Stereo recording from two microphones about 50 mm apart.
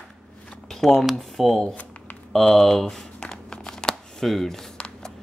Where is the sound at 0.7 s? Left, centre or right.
Centre.